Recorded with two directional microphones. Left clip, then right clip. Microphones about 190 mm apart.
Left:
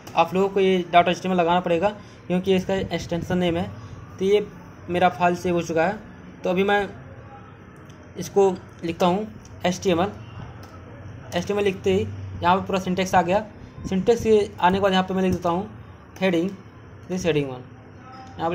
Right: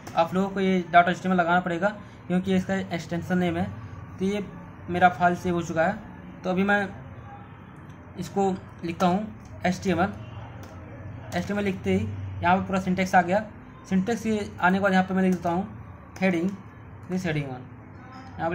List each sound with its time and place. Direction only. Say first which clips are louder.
0.1 s a woman's voice: left 5 dB; 25° left (ahead or behind)
8.2 s a woman's voice: left 7 dB; 20° left (ahead or behind)
11.3 s a woman's voice: left 6 dB; 20° left (ahead or behind)